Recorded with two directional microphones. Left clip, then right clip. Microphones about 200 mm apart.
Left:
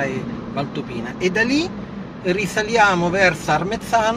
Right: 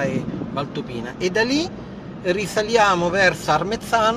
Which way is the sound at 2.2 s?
25° right (ahead or behind).